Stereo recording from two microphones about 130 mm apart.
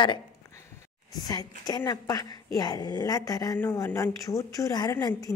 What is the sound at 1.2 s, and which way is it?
A woman's voice, 30° left (ahead or behind).